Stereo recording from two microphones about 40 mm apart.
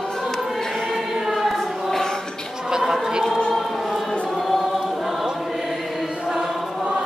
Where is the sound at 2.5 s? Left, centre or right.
Centre.